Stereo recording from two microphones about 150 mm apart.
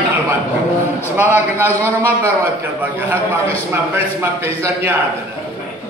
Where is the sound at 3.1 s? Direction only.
15° right (ahead or behind).